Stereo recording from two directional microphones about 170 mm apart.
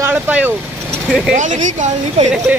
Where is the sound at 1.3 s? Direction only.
45° right (ahead or behind).